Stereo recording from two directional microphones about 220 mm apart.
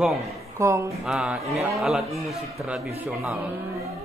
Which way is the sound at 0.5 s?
15° right (ahead or behind).